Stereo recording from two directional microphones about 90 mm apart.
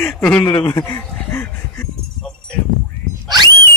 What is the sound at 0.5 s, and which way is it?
Speech, 35° left (ahead or behind).